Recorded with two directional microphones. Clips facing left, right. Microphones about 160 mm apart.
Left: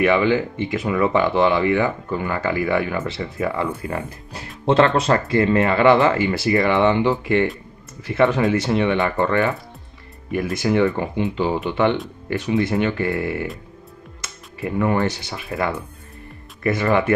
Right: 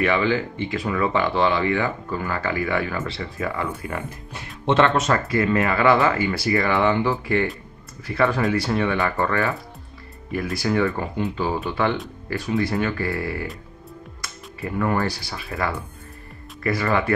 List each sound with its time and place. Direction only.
0.0 s speech: 20° left (ahead or behind)
3.9 s speech: 35° left (ahead or behind)